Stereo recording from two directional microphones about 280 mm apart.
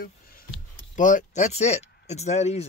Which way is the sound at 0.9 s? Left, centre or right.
Left.